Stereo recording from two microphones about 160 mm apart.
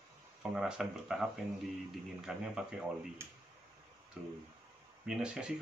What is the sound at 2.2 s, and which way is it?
Speech, 5° right (ahead or behind).